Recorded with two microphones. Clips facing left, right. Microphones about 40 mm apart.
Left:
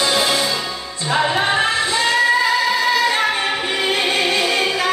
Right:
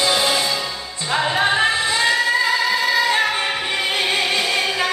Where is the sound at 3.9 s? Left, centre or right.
Centre.